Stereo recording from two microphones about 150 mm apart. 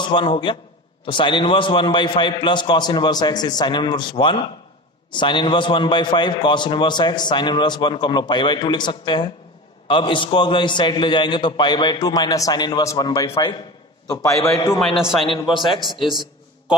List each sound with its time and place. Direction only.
0.0 s a man's voice: 30° left (ahead or behind)
14.0 s a man's voice: 25° left (ahead or behind)
15.0 s a man's voice: 5° right (ahead or behind)
15.2 s a man's voice: 35° left (ahead or behind)